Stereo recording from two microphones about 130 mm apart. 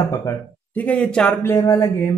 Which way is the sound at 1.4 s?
25° left (ahead or behind).